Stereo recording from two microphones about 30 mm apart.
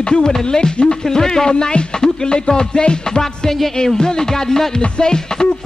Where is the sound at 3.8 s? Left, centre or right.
Centre.